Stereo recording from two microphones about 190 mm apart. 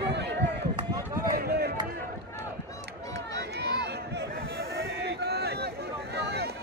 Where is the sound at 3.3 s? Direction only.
60° right (ahead or behind).